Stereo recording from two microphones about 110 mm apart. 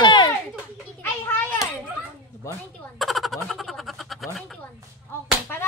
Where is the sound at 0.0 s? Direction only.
45° left (ahead or behind).